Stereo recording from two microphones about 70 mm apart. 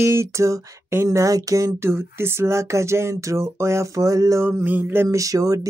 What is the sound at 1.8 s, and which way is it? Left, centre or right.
Speech, right.